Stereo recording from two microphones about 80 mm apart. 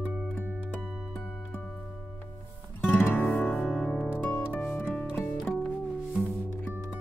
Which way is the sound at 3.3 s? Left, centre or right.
Centre.